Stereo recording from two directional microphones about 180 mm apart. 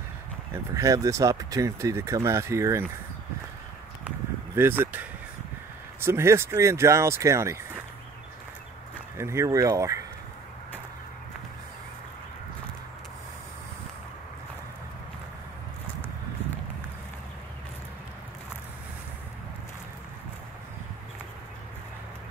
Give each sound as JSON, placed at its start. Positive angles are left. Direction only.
{"t": 0.7, "sound": "speech", "side_deg": -20}
{"t": 4.6, "sound": "speech", "side_deg": -10}
{"t": 9.1, "sound": "speech", "side_deg": -15}